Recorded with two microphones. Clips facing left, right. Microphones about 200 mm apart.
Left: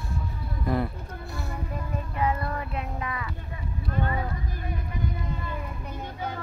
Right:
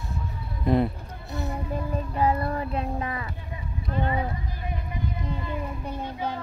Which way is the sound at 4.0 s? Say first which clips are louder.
Right 3 dB; 20° right (ahead or behind).